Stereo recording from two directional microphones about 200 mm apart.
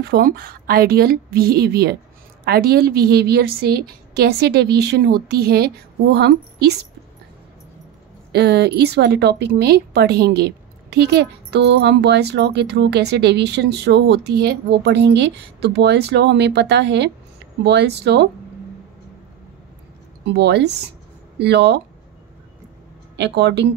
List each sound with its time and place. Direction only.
0.0 s a woman's voice: 50° right (ahead or behind)
8.3 s a woman's voice: 55° right (ahead or behind)
20.2 s a woman's voice: 60° right (ahead or behind)
23.1 s a woman's voice: 60° right (ahead or behind)